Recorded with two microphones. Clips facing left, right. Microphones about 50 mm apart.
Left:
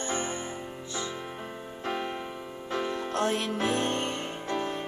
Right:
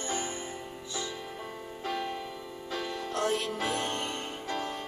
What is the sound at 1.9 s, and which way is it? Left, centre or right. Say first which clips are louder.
Music: left 2 dB; left.